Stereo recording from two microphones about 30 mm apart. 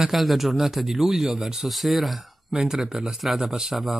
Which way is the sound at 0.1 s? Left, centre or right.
Centre.